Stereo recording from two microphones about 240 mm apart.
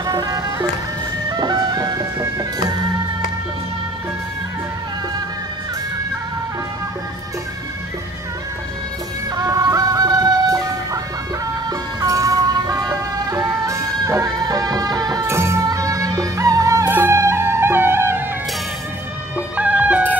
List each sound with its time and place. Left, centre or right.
0.0 s music: centre
9.3 s music: centre
12.0 s music: centre
19.3 s music: centre